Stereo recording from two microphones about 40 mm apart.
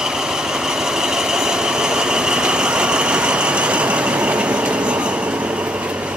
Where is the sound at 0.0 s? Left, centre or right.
Centre.